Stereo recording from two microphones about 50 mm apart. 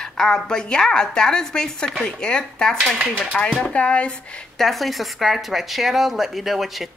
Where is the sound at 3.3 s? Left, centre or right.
Left.